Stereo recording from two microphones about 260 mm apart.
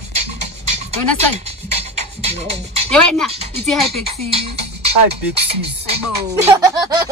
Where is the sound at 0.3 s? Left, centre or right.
Right.